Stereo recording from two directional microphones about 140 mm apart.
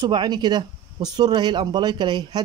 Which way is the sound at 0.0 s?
30° right (ahead or behind).